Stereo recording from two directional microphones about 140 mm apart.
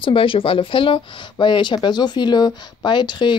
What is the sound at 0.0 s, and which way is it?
Speech, 40° left (ahead or behind).